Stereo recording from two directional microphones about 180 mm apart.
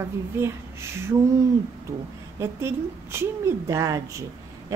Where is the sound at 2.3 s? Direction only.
15° right (ahead or behind).